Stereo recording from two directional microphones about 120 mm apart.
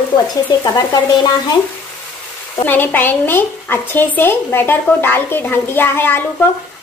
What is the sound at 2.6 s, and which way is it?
A woman's voice, 15° left (ahead or behind).